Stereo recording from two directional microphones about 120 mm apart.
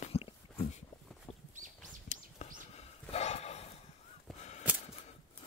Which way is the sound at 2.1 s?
65° left (ahead or behind).